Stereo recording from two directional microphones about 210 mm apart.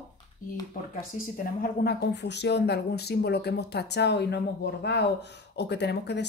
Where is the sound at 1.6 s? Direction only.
50° left (ahead or behind).